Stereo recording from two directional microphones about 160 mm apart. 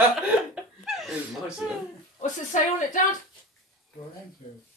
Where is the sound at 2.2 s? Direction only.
50° left (ahead or behind).